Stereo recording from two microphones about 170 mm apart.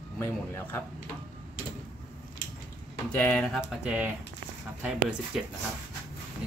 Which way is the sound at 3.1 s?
5° left (ahead or behind).